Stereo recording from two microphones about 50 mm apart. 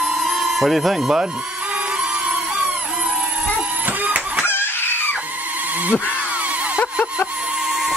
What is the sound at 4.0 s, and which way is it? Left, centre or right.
Chicken, right.